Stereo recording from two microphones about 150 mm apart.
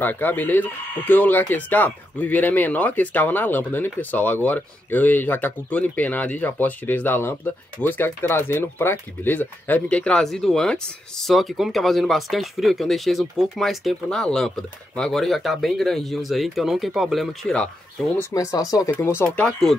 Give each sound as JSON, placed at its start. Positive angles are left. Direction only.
{"t": 0.0, "sound": "speech", "side_deg": 10}
{"t": 18.3, "sound": "speech", "side_deg": 25}
{"t": 19.3, "sound": "speech", "side_deg": 5}